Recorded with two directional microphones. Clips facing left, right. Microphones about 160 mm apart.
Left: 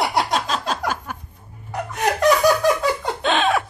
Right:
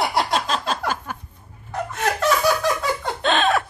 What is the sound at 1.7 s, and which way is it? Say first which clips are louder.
Laughter: left 1 dB; 15° left (ahead or behind).